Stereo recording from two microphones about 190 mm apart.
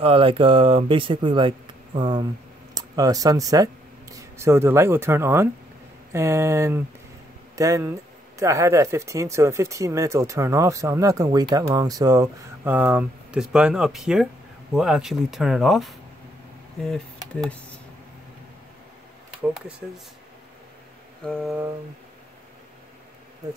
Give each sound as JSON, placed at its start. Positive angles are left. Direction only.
{"t": 0.0, "sound": "speech", "side_deg": -30}
{"t": 21.2, "sound": "mantra", "side_deg": 5}